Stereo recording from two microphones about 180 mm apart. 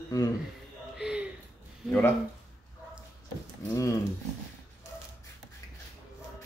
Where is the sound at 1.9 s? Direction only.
10° left (ahead or behind).